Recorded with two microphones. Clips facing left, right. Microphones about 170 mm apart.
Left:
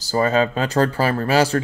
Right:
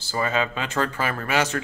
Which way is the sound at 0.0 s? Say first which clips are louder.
Left 7 dB; 40° left (ahead or behind).